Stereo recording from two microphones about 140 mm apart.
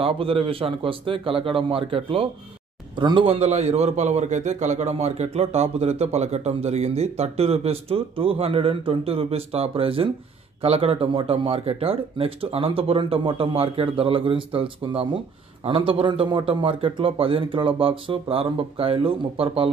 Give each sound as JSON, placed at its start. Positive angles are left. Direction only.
{"t": 0.0, "sound": "a man's voice", "side_deg": -40}